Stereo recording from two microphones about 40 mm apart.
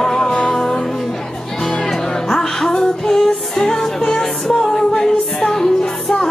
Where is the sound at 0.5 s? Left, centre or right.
Centre.